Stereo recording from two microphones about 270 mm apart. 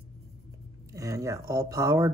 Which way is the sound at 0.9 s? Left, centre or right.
Centre.